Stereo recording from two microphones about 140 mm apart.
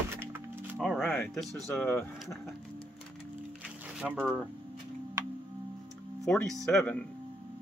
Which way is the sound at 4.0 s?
5° right (ahead or behind).